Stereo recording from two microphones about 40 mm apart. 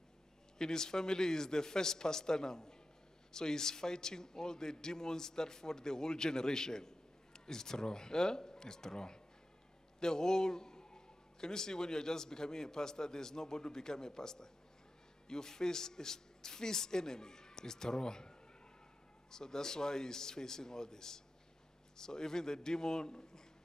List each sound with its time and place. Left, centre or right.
0.6 s a man's voice: centre
19.3 s a man's voice: centre